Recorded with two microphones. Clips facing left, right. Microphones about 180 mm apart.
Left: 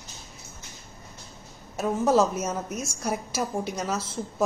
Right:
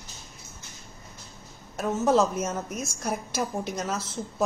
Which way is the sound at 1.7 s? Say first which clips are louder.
Left 1 dB; 5° left (ahead or behind).